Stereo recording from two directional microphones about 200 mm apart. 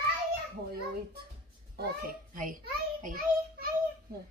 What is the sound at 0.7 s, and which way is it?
A child's voice, 50° right (ahead or behind).